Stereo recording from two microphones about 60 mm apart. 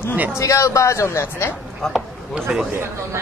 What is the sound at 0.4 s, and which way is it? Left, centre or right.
A man's voice, left.